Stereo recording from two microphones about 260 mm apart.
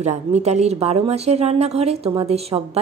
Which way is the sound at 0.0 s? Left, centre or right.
Right.